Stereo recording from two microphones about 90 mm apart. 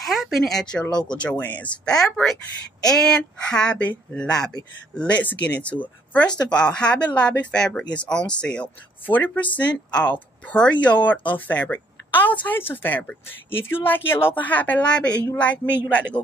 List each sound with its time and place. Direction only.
0.0 s speech: centre (ahead or behind); by 16.1 s 15° left (ahead or behind)